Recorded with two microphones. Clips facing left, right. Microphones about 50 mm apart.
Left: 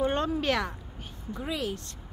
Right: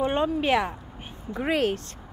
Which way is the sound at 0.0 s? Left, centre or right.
Centre.